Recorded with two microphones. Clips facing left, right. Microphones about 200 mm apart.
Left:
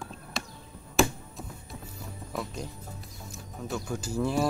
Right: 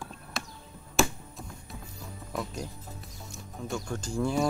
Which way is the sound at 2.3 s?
Centre (ahead or behind).